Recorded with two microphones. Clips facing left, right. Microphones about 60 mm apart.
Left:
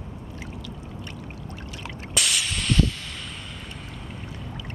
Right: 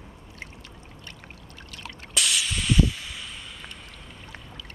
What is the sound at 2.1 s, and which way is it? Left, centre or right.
Spray, centre.